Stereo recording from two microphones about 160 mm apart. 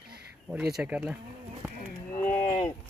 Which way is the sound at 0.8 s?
5° right (ahead or behind).